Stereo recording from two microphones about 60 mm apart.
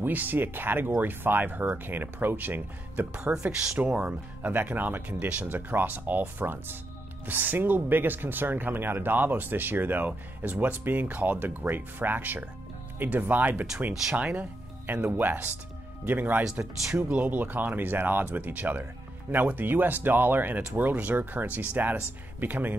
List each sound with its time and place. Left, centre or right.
0.0 s speech: right
3.1 s speech: centre
16.4 s speech: centre; by 22.8 s right